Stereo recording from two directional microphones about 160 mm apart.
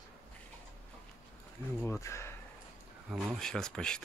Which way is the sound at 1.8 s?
15° left (ahead or behind).